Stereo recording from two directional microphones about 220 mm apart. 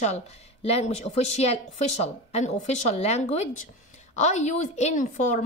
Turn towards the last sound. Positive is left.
turn(degrees=35)  # may be behind; listen again after turning